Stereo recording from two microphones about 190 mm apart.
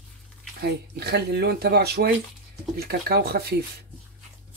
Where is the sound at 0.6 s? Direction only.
60° right (ahead or behind).